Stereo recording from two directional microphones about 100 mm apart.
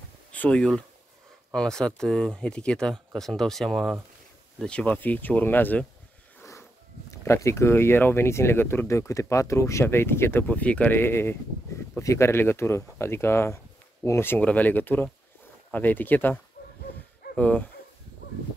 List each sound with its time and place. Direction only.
0.3 s speech: 10° left (ahead or behind)
7.1 s speech: 30° left (ahead or behind)
17.4 s speech: 15° left (ahead or behind)